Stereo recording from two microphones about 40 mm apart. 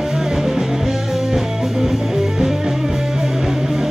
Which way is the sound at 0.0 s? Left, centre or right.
Centre.